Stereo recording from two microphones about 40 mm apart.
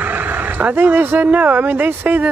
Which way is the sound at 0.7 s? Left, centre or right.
Right.